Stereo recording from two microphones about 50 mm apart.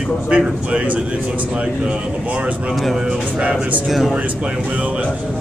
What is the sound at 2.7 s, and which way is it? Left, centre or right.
Speech, centre.